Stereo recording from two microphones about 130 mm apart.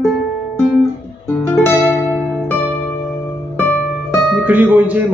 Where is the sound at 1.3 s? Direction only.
15° left (ahead or behind).